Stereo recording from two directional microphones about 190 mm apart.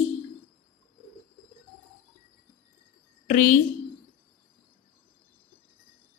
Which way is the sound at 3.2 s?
45° left (ahead or behind).